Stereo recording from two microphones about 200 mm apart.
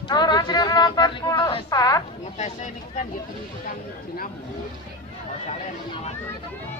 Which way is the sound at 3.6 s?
45° left (ahead or behind).